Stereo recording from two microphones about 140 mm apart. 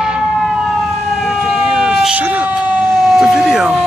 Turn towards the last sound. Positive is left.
turn(degrees=-5)  # may be behind; listen again after turning